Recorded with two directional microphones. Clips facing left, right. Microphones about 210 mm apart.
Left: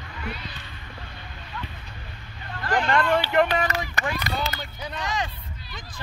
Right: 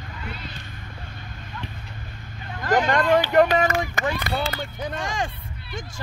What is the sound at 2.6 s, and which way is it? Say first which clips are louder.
Speech: right 3 dB; 45° right (ahead or behind).